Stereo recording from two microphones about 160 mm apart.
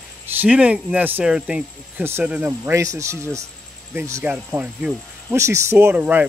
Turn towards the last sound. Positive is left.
turn(degrees=-10)  # may be behind; listen again after turning